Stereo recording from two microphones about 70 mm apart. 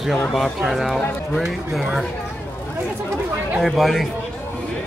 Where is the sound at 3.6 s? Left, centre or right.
Centre.